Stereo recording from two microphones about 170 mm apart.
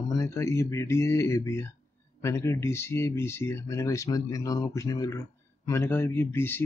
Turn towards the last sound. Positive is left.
turn(degrees=15)  # may be behind; listen again after turning